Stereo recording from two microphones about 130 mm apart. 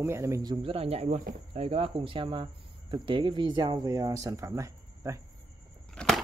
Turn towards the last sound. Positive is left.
turn(degrees=0)  # may be behind; listen again after turning